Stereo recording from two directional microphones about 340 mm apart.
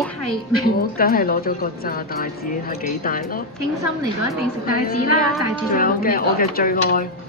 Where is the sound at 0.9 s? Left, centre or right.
Left.